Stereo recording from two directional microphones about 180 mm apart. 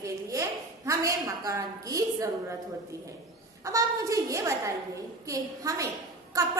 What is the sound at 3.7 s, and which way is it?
A woman's voice, 20° right (ahead or behind).